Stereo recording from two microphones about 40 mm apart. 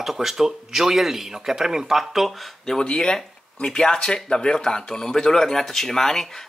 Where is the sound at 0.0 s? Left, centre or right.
Centre.